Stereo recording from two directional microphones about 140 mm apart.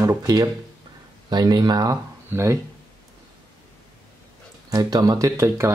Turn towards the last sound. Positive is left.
turn(degrees=-20)  # may be behind; listen again after turning